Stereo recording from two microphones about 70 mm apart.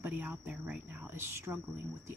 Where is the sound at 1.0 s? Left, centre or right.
Right.